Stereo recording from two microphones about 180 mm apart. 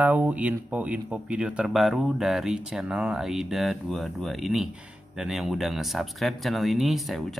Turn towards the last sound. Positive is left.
turn(degrees=0)  # may be behind; listen again after turning